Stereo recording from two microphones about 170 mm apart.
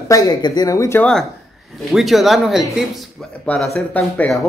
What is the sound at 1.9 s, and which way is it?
Speech, centre (ahead or behind).